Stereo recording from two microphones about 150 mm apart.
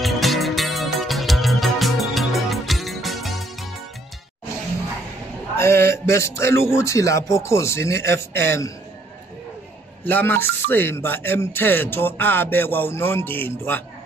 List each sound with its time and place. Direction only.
0.0 s music: centre (ahead or behind)
5.6 s speech: 15° left (ahead or behind)
10.0 s speech: 10° left (ahead or behind)